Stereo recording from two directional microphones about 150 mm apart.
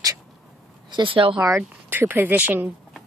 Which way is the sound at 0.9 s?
35° right (ahead or behind).